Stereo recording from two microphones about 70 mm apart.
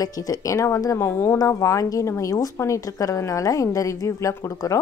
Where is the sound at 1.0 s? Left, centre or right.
Left.